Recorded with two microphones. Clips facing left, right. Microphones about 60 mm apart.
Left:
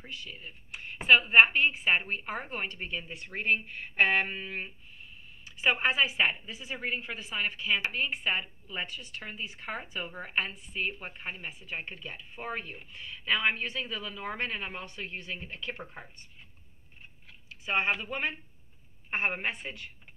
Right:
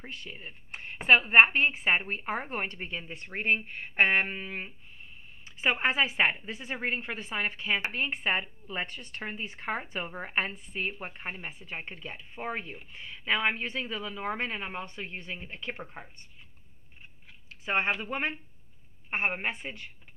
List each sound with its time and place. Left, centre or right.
0.0 s a woman's voice: right
15.8 s speech: centre
17.8 s speech: centre
19.2 s speech: right